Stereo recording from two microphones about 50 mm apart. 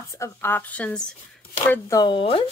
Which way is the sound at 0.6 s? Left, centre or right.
Left.